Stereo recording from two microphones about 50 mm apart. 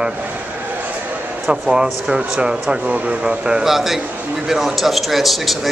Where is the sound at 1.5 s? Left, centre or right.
Centre.